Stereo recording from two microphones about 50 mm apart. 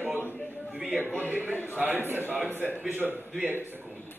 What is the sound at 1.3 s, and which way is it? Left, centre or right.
A man's voice, right.